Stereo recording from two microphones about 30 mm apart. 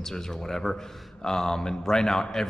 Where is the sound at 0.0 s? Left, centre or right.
Centre.